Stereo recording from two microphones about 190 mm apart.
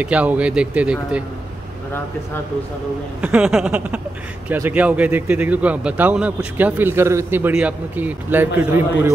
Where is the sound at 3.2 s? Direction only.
5° right (ahead or behind).